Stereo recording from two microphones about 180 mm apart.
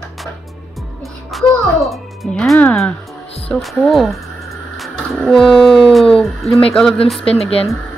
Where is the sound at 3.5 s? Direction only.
Centre (ahead or behind).